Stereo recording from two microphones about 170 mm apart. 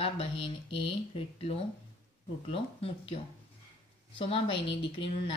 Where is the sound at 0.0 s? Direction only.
30° left (ahead or behind).